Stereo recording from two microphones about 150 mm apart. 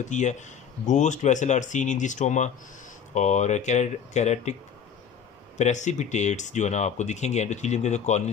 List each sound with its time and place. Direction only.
0.0 s speech: 55° left (ahead or behind)
5.6 s speech: 50° left (ahead or behind)